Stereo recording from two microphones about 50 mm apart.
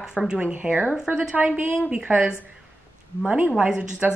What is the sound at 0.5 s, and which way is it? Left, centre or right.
A woman's voice, right.